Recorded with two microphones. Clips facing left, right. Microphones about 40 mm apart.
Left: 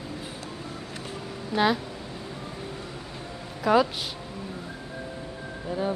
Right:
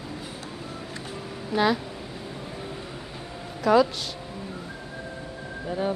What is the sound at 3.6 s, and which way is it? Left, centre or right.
Speech, centre.